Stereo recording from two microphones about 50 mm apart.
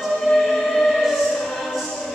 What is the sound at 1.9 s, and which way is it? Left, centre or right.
Music, centre.